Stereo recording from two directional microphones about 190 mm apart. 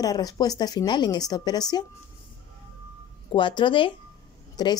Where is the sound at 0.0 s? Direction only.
20° left (ahead or behind).